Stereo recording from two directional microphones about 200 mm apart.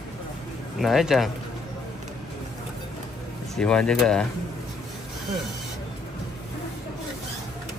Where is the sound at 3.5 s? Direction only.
5° left (ahead or behind).